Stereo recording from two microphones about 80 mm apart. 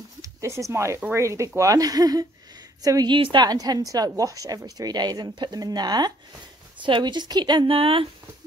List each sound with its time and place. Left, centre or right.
0.2 s speech: right
1.6 s speech: right
3.1 s speech: right
6.8 s a woman's voice: right